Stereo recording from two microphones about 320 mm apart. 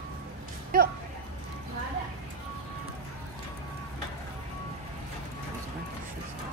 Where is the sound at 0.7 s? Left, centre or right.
Right.